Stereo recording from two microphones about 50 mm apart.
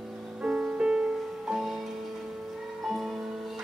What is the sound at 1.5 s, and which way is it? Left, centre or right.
Music, centre.